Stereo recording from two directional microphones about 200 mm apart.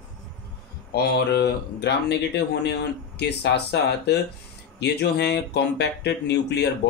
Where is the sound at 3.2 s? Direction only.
55° left (ahead or behind).